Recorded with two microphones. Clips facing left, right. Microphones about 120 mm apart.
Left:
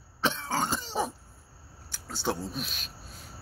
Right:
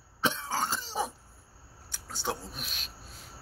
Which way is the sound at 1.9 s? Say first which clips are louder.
Left 3 dB; 15° right (ahead or behind).